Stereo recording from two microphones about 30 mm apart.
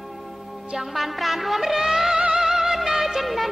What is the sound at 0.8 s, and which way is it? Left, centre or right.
Music, centre.